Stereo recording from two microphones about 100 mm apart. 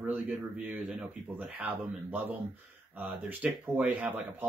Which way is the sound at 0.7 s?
5° right (ahead or behind).